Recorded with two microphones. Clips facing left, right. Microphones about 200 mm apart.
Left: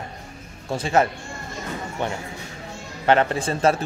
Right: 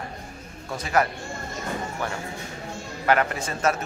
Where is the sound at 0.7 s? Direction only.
25° left (ahead or behind).